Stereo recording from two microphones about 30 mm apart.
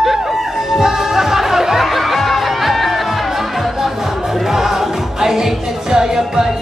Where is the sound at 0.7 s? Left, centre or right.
Centre.